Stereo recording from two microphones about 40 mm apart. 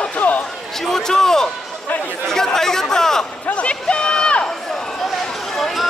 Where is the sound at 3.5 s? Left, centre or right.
Left.